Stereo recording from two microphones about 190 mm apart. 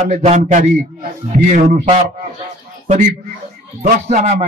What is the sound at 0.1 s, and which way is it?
A man's voice, 40° right (ahead or behind).